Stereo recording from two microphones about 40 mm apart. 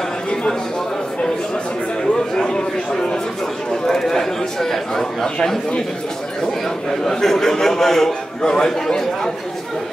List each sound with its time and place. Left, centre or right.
0.3 s a sound: centre
2.3 s chatter: centre
3.8 s a man's voice: centre
7.1 s speech: centre